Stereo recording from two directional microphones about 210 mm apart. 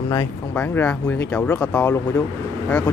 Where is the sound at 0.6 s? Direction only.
10° left (ahead or behind).